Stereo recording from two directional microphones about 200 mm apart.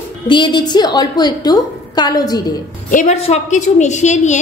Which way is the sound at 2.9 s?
35° left (ahead or behind).